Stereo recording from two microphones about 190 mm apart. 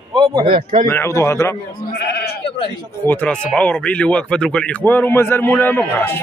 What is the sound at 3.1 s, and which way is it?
A man's voice, 5° left (ahead or behind).